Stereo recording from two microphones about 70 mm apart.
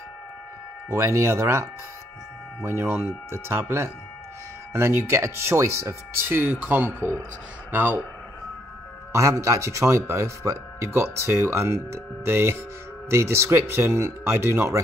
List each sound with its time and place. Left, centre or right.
0.8 s speech: right
6.5 s speech: right
9.1 s speech: right